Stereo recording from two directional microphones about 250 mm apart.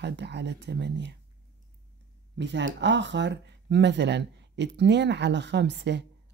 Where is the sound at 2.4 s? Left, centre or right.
Right.